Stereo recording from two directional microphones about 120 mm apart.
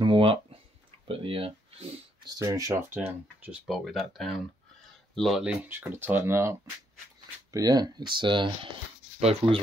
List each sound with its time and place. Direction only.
0.0 s a sound: 45° right (ahead or behind)
1.0 s speech: 50° right (ahead or behind)
2.2 s speech: 25° right (ahead or behind)
2.9 s speech: 15° right (ahead or behind)
3.6 s speech: centre (ahead or behind)
5.7 s speech: 20° right (ahead or behind)
7.5 s speech: 35° right (ahead or behind)
9.2 s speech: 55° right (ahead or behind)